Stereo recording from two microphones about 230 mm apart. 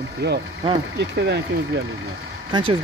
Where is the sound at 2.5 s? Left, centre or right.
Right.